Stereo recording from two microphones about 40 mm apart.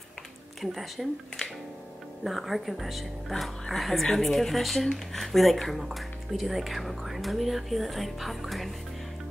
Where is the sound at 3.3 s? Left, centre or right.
Centre.